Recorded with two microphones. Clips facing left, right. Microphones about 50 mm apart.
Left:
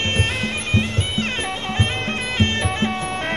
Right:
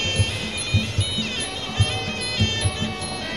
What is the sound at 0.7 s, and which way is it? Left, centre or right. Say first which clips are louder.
Music: left 4 dB; left.